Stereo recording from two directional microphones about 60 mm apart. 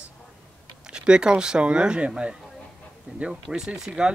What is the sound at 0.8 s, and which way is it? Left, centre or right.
Speech, centre.